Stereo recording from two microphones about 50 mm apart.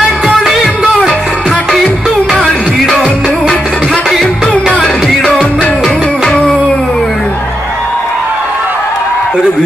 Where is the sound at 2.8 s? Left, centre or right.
Centre.